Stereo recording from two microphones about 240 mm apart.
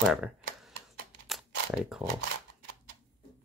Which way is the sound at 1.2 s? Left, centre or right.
Centre.